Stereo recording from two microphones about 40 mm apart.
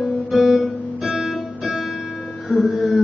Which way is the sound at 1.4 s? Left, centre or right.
Centre.